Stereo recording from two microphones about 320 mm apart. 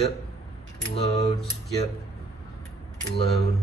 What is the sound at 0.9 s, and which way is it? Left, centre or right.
Speech, centre.